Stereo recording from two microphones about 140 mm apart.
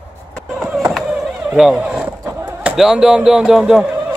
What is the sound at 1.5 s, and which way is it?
Speech, 5° right (ahead or behind).